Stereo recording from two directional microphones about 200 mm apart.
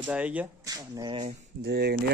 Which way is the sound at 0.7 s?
20° right (ahead or behind).